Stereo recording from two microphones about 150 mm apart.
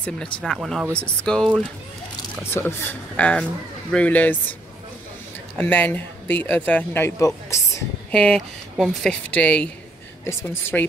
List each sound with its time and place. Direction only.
0.0 s speech: 5° left (ahead or behind)
2.5 s speech: 15° left (ahead or behind)
5.6 s speech: 10° left (ahead or behind)
8.1 s speech: 5° left (ahead or behind)